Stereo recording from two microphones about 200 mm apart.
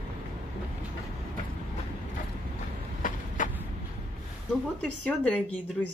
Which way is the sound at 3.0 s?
40° left (ahead or behind).